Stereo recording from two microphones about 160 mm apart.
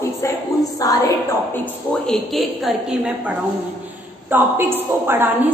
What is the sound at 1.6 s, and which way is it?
A woman's voice, centre (ahead or behind).